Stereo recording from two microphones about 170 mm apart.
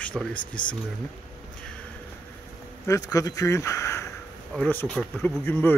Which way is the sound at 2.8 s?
20° left (ahead or behind).